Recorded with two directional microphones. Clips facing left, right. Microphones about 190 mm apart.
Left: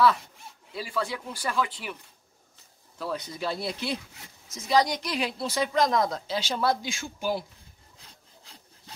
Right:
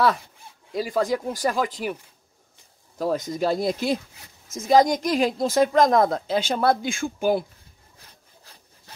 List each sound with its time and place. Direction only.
0.7 s speech: 40° right (ahead or behind)
3.0 s speech: 45° right (ahead or behind)